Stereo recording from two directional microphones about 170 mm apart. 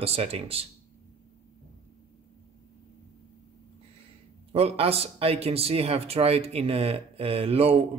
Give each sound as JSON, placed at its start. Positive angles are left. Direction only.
{"t": 0.0, "sound": "speech", "side_deg": -35}
{"t": 4.5, "sound": "speech", "side_deg": -35}